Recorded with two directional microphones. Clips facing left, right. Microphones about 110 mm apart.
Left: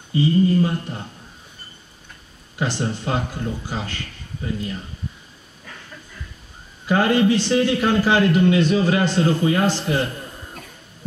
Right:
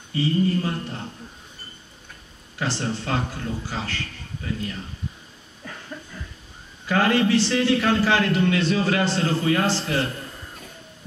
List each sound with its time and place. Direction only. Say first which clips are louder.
0.1 s speech: left 4 dB; 25° left (ahead or behind)
2.6 s a man's voice: left 3 dB; 15° left (ahead or behind)
6.9 s a man's voice: left 2 dB; 20° left (ahead or behind)